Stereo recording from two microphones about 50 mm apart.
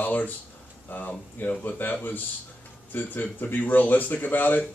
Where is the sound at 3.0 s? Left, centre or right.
Left.